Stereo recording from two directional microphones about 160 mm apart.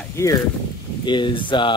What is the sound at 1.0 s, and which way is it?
Speech, 30° left (ahead or behind).